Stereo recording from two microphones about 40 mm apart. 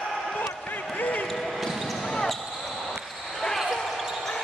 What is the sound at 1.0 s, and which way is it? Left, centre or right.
Basketball bounce, left.